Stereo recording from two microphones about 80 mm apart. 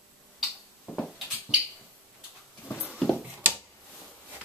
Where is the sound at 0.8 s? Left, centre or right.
Centre.